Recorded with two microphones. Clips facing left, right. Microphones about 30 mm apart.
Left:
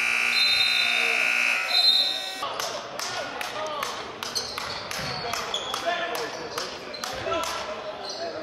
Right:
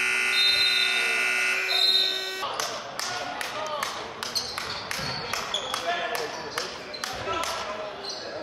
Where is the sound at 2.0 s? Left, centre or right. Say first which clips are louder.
Even; right.